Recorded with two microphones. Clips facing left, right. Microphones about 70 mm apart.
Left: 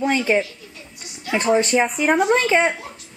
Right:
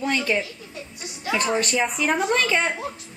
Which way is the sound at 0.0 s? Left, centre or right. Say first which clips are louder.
Left 5 dB; centre.